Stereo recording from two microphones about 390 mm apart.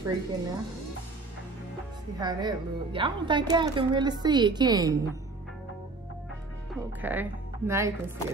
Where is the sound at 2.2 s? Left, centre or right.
Centre.